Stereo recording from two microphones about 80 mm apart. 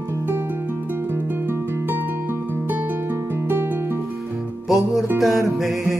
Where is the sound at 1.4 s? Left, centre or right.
Right.